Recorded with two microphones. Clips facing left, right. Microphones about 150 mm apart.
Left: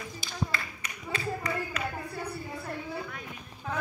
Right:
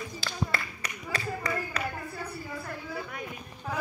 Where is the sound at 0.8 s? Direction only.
35° right (ahead or behind).